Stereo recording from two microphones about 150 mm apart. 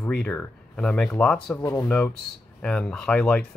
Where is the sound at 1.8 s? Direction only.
10° left (ahead or behind).